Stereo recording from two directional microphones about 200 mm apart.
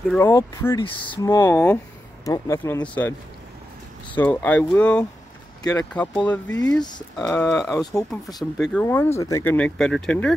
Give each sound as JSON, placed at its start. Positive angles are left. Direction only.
{"t": 0.1, "sound": "speech", "side_deg": 10}
{"t": 0.8, "sound": "speech", "side_deg": 25}
{"t": 4.2, "sound": "speech", "side_deg": 10}
{"t": 5.6, "sound": "speech", "side_deg": 20}
{"t": 6.2, "sound": "speech", "side_deg": 10}
{"t": 7.2, "sound": "speech", "side_deg": 5}
{"t": 7.8, "sound": "speech", "side_deg": 15}
{"t": 8.4, "sound": "speech", "side_deg": 0}
{"t": 8.8, "sound": "speech", "side_deg": 10}